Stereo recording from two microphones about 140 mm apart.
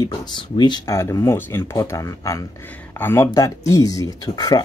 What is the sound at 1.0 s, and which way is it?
Speech, 20° left (ahead or behind).